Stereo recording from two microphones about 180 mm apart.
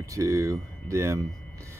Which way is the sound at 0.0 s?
15° right (ahead or behind).